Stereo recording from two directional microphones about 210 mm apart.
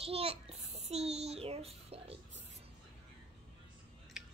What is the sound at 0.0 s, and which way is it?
Child singing, 30° right (ahead or behind).